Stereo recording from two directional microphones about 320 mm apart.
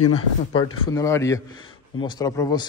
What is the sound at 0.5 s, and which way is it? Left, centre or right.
A man's voice, centre.